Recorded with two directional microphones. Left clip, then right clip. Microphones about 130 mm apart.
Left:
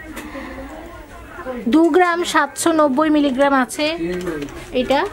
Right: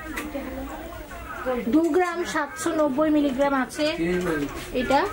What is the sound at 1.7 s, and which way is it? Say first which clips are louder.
A woman's voice: left 9 dB; 45° left (ahead or behind).